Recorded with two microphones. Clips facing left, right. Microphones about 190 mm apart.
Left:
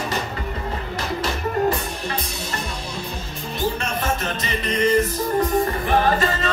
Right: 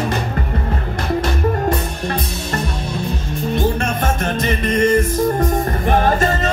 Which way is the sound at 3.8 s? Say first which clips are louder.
Right 4 dB; 50° right (ahead or behind).